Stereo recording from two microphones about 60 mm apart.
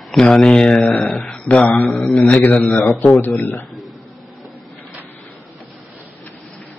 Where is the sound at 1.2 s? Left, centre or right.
Left.